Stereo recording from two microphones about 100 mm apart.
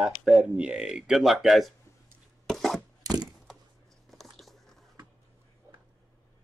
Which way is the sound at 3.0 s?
40° right (ahead or behind).